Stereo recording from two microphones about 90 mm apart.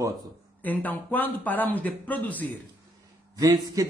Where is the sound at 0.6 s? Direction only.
20° left (ahead or behind).